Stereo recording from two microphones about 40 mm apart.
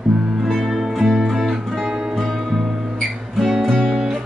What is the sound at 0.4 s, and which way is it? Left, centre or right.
Music, centre.